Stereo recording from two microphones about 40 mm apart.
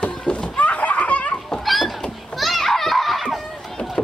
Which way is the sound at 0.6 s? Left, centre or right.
Left.